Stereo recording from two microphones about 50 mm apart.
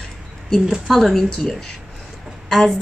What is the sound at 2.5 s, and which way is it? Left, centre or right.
Speech, centre.